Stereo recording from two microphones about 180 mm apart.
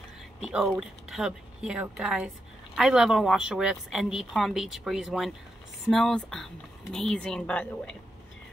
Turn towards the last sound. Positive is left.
turn(degrees=5)  # may be behind; listen again after turning